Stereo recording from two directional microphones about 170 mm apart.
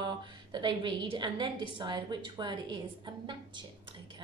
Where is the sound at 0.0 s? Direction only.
30° right (ahead or behind).